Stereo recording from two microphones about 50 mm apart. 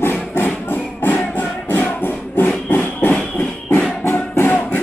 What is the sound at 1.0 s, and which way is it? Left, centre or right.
Music, left.